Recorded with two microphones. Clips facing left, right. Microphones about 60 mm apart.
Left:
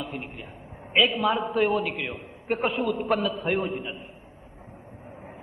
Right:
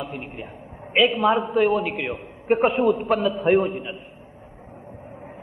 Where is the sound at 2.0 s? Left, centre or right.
Centre.